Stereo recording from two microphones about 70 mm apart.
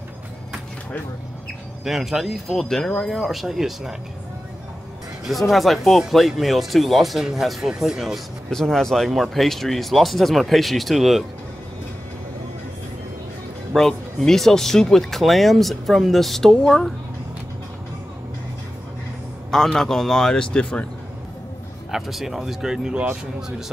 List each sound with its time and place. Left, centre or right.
1.9 s speech: centre
5.3 s speech: centre
8.5 s speech: centre
13.7 s speech: centre
19.5 s a man's voice: centre
21.9 s speech: centre